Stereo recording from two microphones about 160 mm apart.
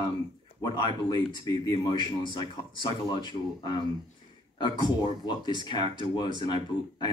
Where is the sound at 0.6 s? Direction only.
25° left (ahead or behind).